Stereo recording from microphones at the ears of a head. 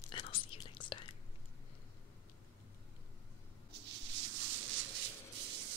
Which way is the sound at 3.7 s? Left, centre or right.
Right.